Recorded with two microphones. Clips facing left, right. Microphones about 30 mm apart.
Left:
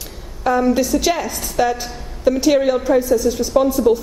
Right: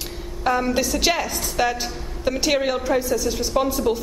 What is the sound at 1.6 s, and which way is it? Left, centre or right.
A woman's voice, right.